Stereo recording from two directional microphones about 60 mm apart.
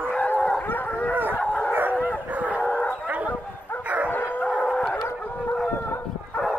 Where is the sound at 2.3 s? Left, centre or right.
Right.